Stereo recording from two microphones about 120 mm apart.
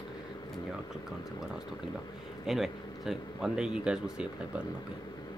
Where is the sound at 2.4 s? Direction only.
5° right (ahead or behind).